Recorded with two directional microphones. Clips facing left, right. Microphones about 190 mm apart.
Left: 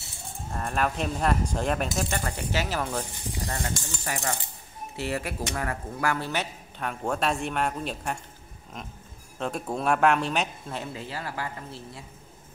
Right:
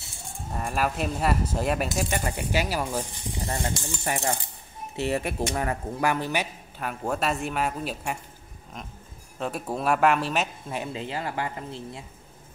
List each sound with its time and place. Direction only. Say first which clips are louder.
0.5 s speech: even; 5° right (ahead or behind)
3.8 s speech: right 4 dB; 25° right (ahead or behind); by 10.5 s centre (ahead or behind)
10.7 s speech: right 3 dB; 20° right (ahead or behind)